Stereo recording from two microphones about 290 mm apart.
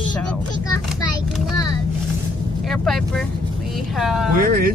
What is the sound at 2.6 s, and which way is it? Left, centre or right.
Speech, centre.